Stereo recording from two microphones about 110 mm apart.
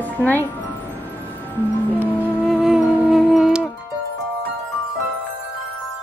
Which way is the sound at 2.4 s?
5° right (ahead or behind).